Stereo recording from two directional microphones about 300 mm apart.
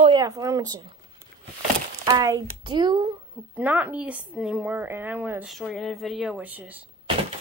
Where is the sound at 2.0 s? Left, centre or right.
Centre.